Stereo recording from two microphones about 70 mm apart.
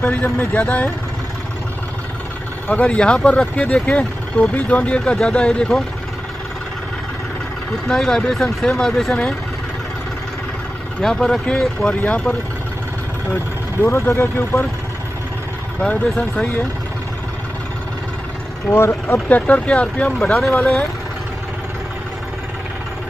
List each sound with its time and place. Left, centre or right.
0.0 s speech: left
2.7 s speech: centre
7.9 s speech: centre
11.0 s speech: centre
13.7 s speech: left
15.8 s speech: centre
18.9 s speech: left